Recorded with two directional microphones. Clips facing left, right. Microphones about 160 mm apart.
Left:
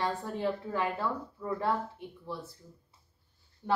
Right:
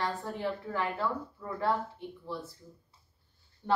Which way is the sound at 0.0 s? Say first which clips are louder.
Left 2 dB; 20° left (ahead or behind).